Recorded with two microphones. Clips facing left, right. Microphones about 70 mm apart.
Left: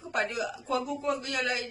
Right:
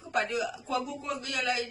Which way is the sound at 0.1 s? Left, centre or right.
Left.